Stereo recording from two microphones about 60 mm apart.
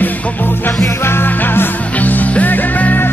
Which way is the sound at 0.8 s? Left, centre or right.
Left.